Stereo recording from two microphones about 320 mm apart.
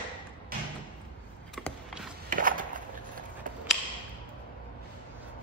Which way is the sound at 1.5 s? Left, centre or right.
Centre.